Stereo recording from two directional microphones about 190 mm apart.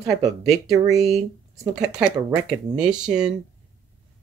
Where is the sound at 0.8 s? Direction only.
Centre (ahead or behind).